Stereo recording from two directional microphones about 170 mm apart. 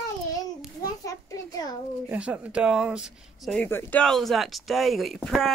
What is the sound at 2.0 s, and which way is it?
Speech, 10° right (ahead or behind).